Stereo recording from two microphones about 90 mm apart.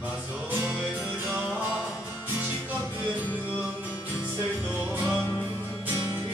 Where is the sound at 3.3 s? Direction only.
25° left (ahead or behind).